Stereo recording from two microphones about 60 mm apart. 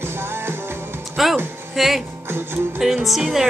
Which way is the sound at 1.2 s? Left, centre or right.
Centre.